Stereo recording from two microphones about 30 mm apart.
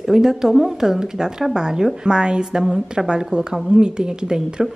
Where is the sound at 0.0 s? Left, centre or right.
Centre.